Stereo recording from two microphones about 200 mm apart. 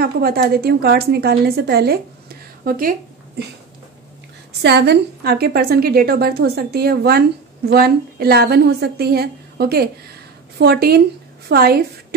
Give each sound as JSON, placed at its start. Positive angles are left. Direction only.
{"t": 0.0, "sound": "a woman's voice", "side_deg": -50}
{"t": 4.6, "sound": "a woman's voice", "side_deg": -55}